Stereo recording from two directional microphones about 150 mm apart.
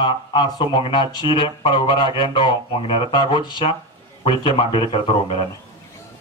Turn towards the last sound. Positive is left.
turn(degrees=40)  # may be behind; listen again after turning